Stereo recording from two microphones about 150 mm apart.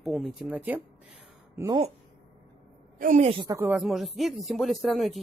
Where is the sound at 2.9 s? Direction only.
60° right (ahead or behind).